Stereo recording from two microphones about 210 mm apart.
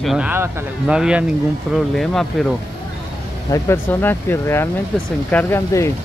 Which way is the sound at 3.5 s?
10° left (ahead or behind).